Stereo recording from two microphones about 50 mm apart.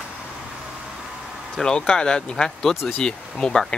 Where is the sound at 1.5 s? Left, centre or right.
Centre.